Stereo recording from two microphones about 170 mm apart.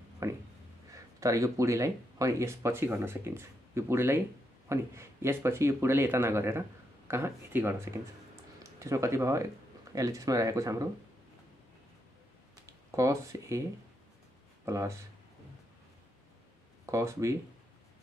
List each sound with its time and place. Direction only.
0.2 s speech: 15° right (ahead or behind)
12.6 s speech: 20° right (ahead or behind)
14.6 s speech: 15° right (ahead or behind)
16.8 s speech: 15° right (ahead or behind)